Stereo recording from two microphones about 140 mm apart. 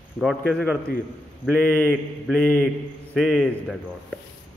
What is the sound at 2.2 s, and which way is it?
Speech, 5° left (ahead or behind).